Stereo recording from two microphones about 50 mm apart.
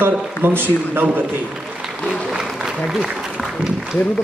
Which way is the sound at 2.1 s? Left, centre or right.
Centre.